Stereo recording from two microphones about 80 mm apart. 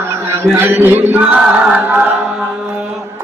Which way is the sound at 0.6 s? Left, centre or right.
Right.